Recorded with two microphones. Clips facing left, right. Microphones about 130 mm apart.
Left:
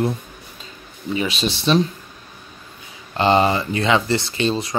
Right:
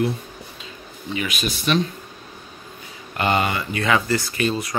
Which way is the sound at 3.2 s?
30° left (ahead or behind).